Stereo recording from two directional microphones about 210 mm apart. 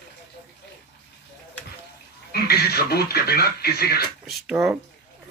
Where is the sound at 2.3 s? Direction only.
50° left (ahead or behind).